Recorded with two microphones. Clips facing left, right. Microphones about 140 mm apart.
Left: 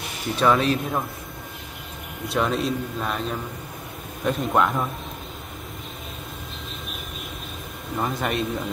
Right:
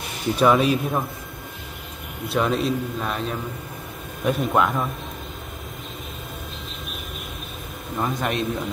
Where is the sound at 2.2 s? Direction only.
Centre (ahead or behind).